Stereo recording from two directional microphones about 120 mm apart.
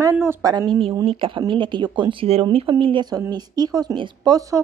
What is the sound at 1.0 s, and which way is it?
Speech, 45° right (ahead or behind).